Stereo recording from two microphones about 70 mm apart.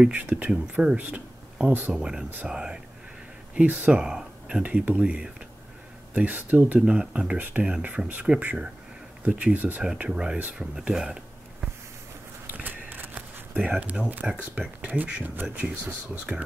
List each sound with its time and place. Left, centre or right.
0.0 s speech: centre
1.9 s speech: centre
7.3 s speech: right
7.6 s speech: centre
9.8 s speech: centre
12.5 s walk: right
14.2 s speech: centre